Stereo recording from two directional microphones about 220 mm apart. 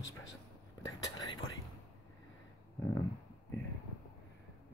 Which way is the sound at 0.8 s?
20° left (ahead or behind).